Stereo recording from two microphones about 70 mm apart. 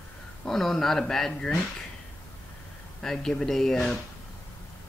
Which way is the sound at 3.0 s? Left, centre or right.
Centre.